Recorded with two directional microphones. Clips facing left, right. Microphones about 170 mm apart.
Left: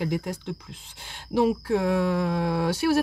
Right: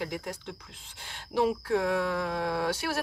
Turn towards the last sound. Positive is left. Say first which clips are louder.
# left 7 dB
turn(degrees=10)  # may be behind; listen again after turning